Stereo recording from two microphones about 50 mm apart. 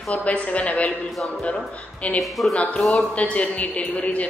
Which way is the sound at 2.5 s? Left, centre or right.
Left.